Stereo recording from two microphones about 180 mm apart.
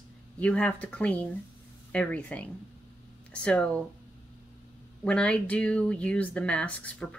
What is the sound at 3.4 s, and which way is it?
Speech, 5° left (ahead or behind).